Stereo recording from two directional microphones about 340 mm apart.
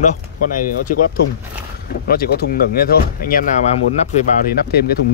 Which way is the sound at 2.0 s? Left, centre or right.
Left.